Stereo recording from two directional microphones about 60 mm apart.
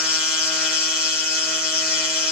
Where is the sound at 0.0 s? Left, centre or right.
Centre.